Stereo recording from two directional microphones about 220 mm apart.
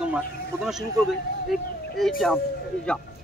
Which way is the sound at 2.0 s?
Centre (ahead or behind).